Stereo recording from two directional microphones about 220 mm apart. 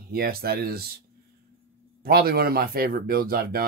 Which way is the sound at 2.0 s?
45° right (ahead or behind).